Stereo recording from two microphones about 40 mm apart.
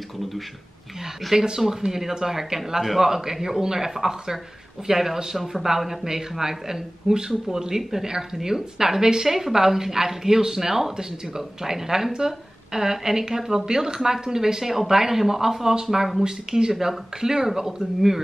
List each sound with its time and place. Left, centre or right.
1.3 s speech: centre
16.7 s speech: centre